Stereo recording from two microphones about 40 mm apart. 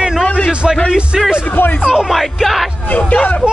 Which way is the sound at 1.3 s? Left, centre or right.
Left.